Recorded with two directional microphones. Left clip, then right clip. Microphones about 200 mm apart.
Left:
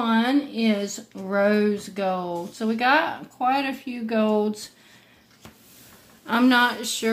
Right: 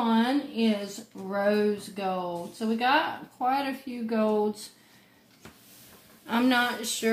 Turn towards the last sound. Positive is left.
turn(degrees=25)  # may be behind; listen again after turning